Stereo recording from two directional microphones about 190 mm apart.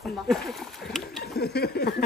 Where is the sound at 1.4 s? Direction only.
60° left (ahead or behind).